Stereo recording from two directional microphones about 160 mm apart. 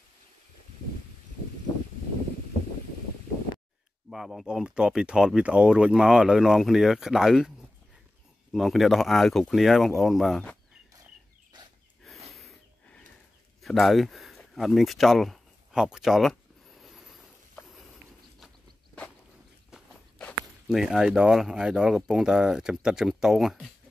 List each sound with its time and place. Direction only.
4.1 s speech: centre (ahead or behind)
8.5 s speech: centre (ahead or behind)
12.3 s a sound: centre (ahead or behind)
19.7 s walk: 5° right (ahead or behind)
20.2 s speech: 5° left (ahead or behind)